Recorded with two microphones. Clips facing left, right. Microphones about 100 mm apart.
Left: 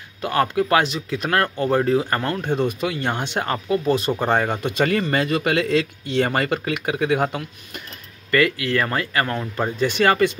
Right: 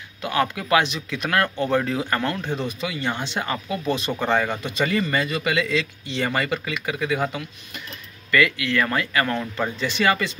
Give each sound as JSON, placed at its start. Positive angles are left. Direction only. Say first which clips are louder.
{"t": 0.2, "sound": "a man's voice", "louder": "left 4 dB", "side_deg": 40}
{"t": 2.4, "sound": "a man's voice", "louder": "left 5 dB", "side_deg": 50}
{"t": 3.5, "sound": "a man's voice", "louder": "left 7 dB", "side_deg": 35}
{"t": 8.3, "sound": "a man's voice", "louder": "left 2 dB", "side_deg": 40}
{"t": 9.6, "sound": "a man's voice", "louder": "left 7 dB", "side_deg": 45}